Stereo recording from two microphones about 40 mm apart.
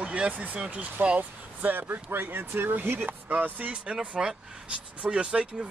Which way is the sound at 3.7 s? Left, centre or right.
Right.